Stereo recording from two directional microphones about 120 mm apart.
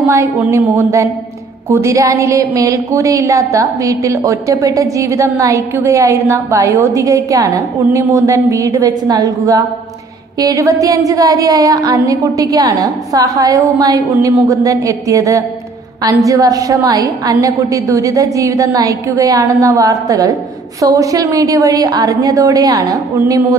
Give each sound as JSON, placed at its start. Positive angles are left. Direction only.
{"t": 0.0, "sound": "a woman's voice", "side_deg": -20}